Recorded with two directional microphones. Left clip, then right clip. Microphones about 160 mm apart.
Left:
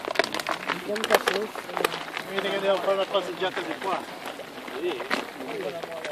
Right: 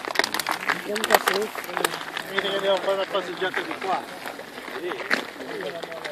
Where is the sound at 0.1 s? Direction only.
60° right (ahead or behind).